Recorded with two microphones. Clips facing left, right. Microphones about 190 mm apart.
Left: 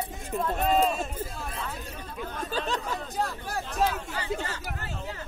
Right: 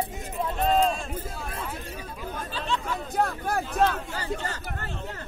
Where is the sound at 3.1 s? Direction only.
60° right (ahead or behind).